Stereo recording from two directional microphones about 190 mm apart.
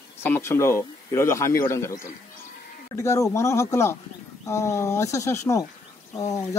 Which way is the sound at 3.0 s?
15° left (ahead or behind).